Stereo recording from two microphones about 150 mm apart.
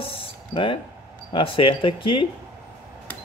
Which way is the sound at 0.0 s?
35° left (ahead or behind).